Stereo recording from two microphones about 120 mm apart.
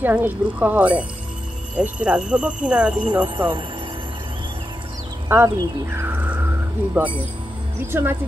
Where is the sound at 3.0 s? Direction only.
40° right (ahead or behind).